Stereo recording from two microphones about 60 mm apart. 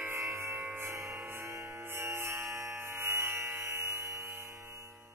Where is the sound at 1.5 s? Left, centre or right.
Right.